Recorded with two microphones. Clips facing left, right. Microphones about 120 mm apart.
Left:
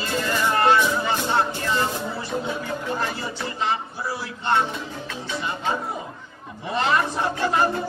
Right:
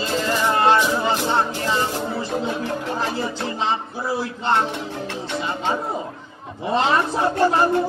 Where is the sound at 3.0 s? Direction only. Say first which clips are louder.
Right 4 dB; 30° right (ahead or behind).